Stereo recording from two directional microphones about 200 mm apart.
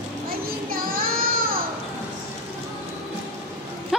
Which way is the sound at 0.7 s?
45° right (ahead or behind).